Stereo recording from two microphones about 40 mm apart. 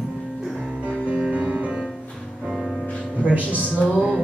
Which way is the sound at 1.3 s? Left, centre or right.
Right.